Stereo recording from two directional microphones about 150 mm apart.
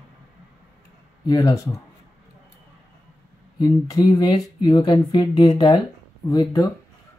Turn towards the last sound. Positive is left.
turn(degrees=25)  # may be behind; listen again after turning